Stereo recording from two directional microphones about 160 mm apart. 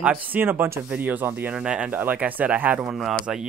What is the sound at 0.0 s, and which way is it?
Speech, 10° right (ahead or behind).